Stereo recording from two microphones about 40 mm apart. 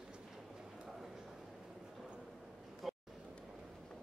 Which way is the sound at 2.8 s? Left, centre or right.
Centre.